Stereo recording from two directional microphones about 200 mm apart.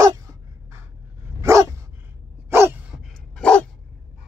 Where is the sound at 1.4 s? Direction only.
15° right (ahead or behind).